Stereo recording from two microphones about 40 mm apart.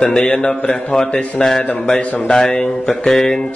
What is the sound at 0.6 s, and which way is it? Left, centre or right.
Speech, left.